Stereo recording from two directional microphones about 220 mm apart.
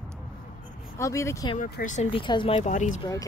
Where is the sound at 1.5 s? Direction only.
40° left (ahead or behind).